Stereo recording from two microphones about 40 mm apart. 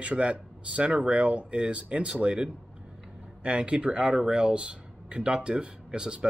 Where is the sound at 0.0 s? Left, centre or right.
Right.